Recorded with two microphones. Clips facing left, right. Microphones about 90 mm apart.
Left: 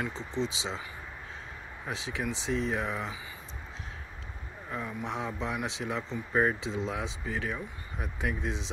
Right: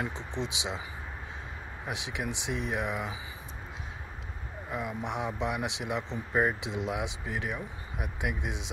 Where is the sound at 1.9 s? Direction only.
10° right (ahead or behind).